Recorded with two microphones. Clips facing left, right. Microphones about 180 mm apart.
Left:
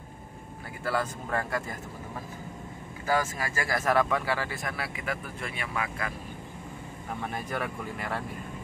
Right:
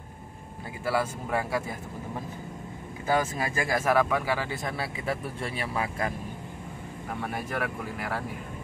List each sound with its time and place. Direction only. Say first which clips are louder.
0.8 s speech: right 2 dB; 10° right (ahead or behind)
3.1 s speech: right 2 dB; 20° right (ahead or behind); by 6.1 s 35° right (ahead or behind)
7.2 s speech: right 2 dB; 5° right (ahead or behind)